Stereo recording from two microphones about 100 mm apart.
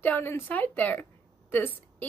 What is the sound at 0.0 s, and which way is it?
Speech, 20° left (ahead or behind).